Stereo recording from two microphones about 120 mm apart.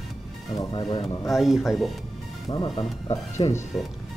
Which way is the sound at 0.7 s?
40° left (ahead or behind).